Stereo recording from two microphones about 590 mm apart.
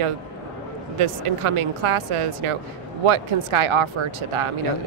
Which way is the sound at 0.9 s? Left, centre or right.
Right.